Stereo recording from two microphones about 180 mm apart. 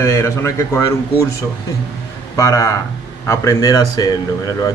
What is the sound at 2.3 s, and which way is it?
A man's voice, 15° left (ahead or behind).